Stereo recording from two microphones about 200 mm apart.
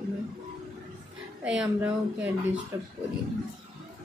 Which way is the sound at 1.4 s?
5° right (ahead or behind).